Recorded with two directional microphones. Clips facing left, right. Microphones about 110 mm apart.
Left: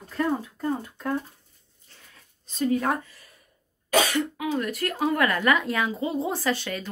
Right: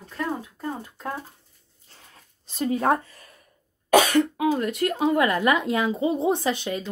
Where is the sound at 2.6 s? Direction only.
30° right (ahead or behind).